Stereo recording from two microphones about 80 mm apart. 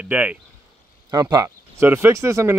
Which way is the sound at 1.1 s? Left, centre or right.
Right.